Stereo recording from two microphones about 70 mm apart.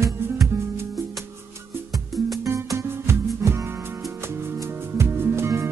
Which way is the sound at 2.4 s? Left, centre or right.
Right.